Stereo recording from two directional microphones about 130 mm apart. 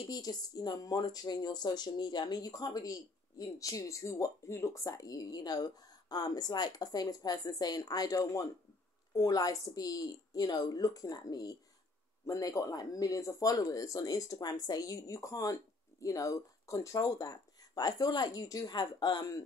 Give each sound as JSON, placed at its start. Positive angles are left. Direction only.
{"t": 0.1, "sound": "speech", "side_deg": 30}